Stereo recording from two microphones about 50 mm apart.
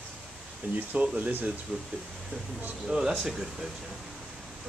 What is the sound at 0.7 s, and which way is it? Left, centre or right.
Speech, right.